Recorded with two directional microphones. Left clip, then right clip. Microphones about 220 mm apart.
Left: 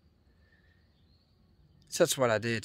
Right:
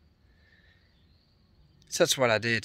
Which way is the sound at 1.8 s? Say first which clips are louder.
Right 3 dB; 5° left (ahead or behind).